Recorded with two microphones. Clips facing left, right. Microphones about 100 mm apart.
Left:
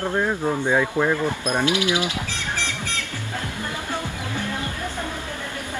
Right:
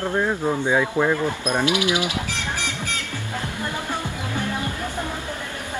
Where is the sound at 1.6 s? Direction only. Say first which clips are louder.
Even; 20° right (ahead or behind).